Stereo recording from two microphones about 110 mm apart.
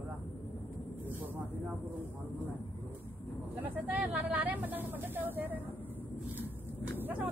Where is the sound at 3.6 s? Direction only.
15° right (ahead or behind).